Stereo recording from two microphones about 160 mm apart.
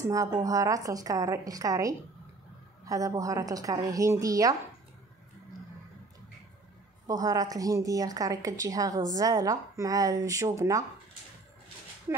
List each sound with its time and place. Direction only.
0.0 s a woman's voice: 20° right (ahead or behind)
7.1 s a woman's voice: 20° right (ahead or behind)
12.1 s speech: 15° right (ahead or behind)